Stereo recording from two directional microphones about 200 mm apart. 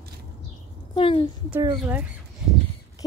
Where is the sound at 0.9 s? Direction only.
25° left (ahead or behind).